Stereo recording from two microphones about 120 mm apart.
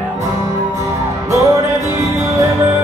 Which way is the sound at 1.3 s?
25° right (ahead or behind).